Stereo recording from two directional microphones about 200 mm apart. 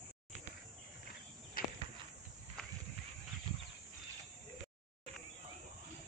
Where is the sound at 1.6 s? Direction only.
45° left (ahead or behind).